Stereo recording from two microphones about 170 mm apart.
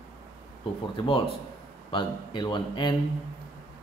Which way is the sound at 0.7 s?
35° left (ahead or behind).